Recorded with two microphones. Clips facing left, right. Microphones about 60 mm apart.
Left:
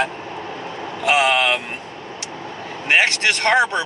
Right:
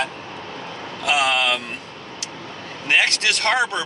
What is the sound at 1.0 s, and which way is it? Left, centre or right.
Vehicle, left.